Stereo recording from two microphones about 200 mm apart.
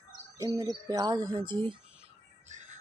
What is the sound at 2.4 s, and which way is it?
Music, 35° right (ahead or behind).